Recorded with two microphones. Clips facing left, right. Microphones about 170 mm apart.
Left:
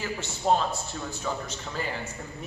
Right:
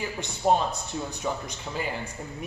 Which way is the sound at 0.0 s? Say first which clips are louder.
Right 2 dB; 15° right (ahead or behind).